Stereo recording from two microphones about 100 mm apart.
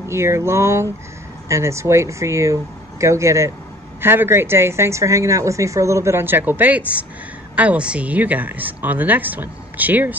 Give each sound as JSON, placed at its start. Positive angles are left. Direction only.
{"t": 0.1, "sound": "a woman's voice", "side_deg": -25}